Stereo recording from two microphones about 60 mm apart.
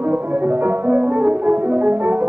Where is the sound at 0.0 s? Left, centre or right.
Right.